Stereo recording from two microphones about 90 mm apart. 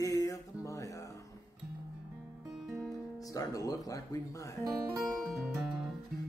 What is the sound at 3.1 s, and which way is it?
Speech, 40° left (ahead or behind).